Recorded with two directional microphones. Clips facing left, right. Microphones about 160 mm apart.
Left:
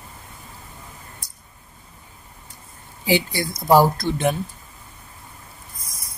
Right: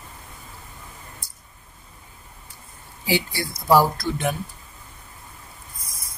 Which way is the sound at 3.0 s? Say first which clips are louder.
Left 3 dB; 20° left (ahead or behind).